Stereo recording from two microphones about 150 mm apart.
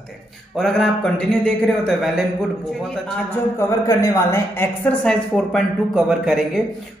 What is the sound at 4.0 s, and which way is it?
Speech, 20° left (ahead or behind).